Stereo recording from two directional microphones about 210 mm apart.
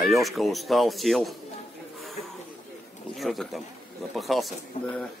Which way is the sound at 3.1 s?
Centre (ahead or behind).